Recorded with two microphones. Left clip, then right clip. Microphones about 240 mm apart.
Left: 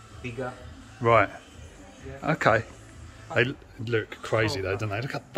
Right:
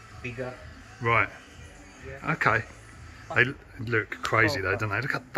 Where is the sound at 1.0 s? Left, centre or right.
Centre.